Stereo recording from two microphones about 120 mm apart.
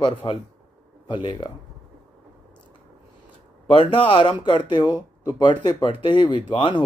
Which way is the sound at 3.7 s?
45° left (ahead or behind).